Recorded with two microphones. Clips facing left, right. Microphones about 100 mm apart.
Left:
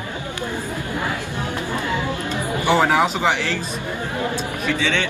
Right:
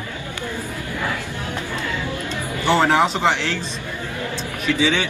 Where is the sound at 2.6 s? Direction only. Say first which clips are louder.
Right 1 dB; 10° left (ahead or behind).